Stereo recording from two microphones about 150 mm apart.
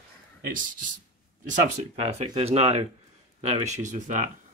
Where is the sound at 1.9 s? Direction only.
45° right (ahead or behind).